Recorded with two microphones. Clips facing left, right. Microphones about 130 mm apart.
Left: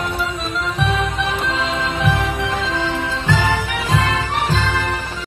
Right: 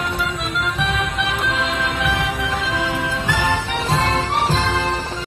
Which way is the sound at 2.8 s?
15° right (ahead or behind).